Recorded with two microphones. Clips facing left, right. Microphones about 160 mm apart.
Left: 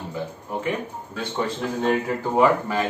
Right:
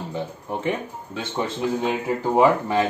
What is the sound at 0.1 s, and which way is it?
Speech, 25° right (ahead or behind).